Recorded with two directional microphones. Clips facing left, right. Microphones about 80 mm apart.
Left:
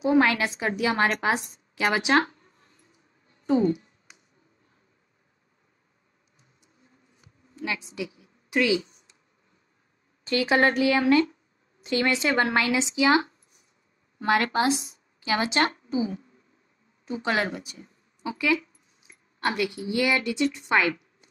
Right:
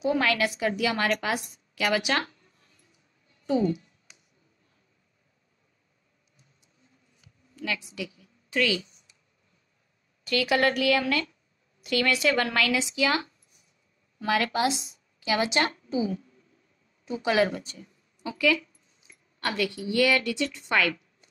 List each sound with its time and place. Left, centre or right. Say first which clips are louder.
0.0 s a woman's voice: left 3 dB; left
7.2 s a sound: left 3 dB; left
10.2 s speech: left 2 dB; left
14.4 s speech: left 2 dB; left
17.2 s speech: right 3 dB; centre
17.5 s speech: right 1 dB; centre
17.7 s speech: even; left